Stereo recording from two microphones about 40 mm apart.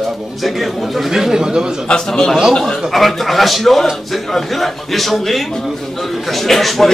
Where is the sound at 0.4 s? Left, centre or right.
Centre.